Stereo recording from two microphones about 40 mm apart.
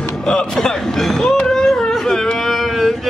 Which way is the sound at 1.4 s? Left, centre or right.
Centre.